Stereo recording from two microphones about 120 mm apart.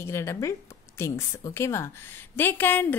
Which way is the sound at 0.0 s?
25° left (ahead or behind).